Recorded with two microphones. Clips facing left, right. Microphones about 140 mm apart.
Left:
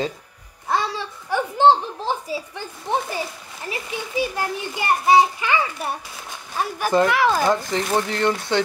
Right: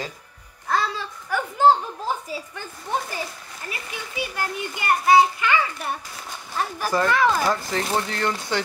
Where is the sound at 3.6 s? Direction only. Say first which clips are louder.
Left 6 dB; 25° left (ahead or behind).